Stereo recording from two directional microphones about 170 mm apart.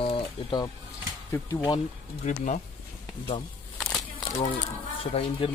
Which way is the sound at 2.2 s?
45° left (ahead or behind).